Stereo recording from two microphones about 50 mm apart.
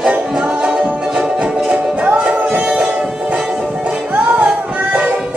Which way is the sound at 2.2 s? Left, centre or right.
Centre.